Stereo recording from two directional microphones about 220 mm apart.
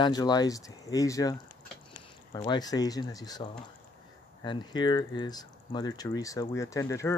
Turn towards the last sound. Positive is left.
turn(degrees=15)  # may be behind; listen again after turning